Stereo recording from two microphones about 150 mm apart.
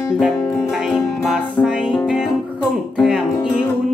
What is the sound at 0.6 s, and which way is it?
Music, 5° right (ahead or behind).